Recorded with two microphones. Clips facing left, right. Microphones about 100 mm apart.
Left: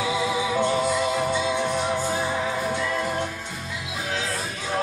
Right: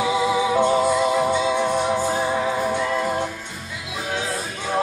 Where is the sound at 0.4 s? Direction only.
25° right (ahead or behind).